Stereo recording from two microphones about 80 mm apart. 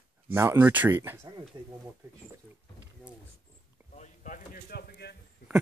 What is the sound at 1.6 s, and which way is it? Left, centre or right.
Speech, right.